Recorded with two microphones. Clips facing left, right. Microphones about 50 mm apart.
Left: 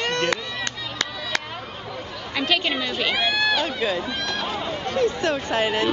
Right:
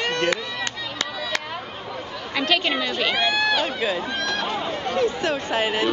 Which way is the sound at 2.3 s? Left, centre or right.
Centre.